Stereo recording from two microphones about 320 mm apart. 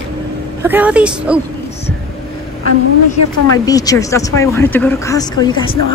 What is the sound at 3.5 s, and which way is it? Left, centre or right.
Speech, centre.